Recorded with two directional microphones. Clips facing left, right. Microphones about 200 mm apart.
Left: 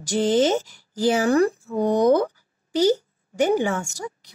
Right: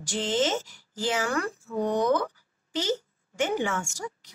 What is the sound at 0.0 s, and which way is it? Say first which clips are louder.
Speech: left 8 dB; 40° left (ahead or behind).